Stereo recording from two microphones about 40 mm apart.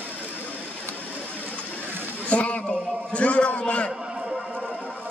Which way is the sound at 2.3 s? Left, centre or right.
Left.